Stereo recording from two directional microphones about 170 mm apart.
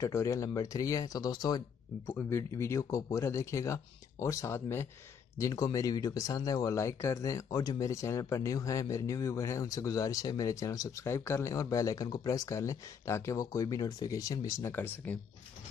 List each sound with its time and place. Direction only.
0.0 s speech: 20° left (ahead or behind)